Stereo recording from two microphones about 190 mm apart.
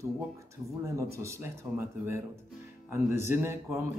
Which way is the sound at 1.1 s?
15° right (ahead or behind).